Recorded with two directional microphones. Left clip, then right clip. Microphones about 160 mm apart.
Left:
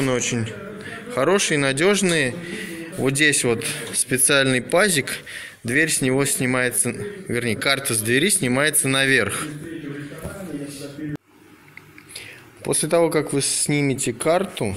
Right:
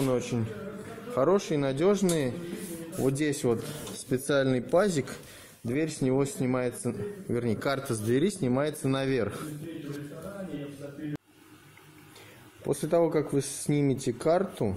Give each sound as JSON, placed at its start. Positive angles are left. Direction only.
{"t": 0.0, "sound": "a man's voice", "side_deg": 0}
{"t": 3.0, "sound": "a man's voice", "side_deg": 0}
{"t": 3.3, "sound": "a man's voice", "side_deg": -15}
{"t": 7.3, "sound": "a man's voice", "side_deg": -25}
{"t": 12.6, "sound": "a man's voice", "side_deg": -10}